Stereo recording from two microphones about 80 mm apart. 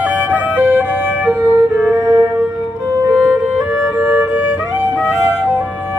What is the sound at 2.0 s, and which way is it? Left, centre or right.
Music, right.